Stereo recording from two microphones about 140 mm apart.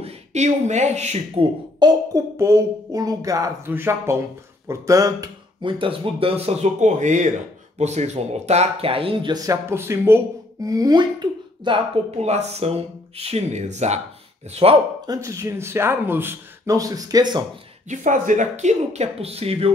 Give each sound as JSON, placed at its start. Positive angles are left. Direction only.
{"t": 0.0, "sound": "speech", "side_deg": -55}
{"t": 1.8, "sound": "speech", "side_deg": -25}
{"t": 5.7, "sound": "speech", "side_deg": -40}
{"t": 9.7, "sound": "speech", "side_deg": -20}
{"t": 12.2, "sound": "speech", "side_deg": -50}
{"t": 15.0, "sound": "speech", "side_deg": -20}
{"t": 17.8, "sound": "speech", "side_deg": -65}